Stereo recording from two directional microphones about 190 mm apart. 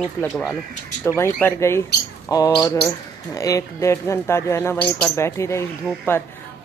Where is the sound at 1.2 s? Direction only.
10° left (ahead or behind).